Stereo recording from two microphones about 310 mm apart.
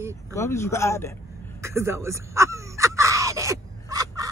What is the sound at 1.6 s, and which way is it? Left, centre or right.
Caw, centre.